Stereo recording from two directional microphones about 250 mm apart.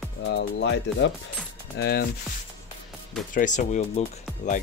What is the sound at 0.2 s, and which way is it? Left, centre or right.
Speech, left.